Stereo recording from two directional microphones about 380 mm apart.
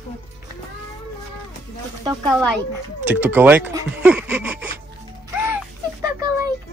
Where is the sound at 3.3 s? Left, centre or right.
Centre.